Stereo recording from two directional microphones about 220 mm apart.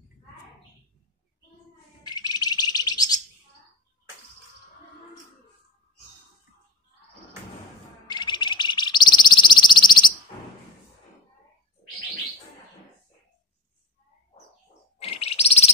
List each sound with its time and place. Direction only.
2.0 s bird: 20° left (ahead or behind)
8.1 s bird: 20° left (ahead or behind)
15.0 s bird: 25° left (ahead or behind)